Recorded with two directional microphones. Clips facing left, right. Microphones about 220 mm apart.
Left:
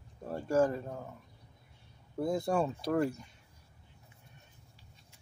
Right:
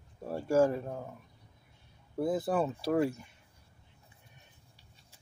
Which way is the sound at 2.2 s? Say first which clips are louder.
Right 1 dB; 5° right (ahead or behind).